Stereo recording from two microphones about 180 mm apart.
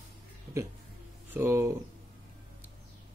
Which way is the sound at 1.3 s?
10° right (ahead or behind).